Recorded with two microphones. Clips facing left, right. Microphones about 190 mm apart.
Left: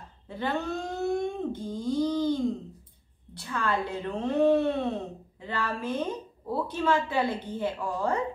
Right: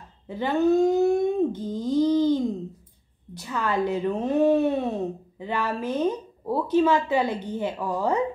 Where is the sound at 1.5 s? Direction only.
10° left (ahead or behind).